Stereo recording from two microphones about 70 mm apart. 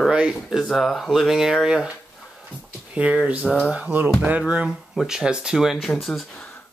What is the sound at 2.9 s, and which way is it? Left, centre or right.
Speech, centre.